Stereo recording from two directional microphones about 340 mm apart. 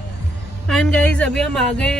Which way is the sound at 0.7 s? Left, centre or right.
Centre.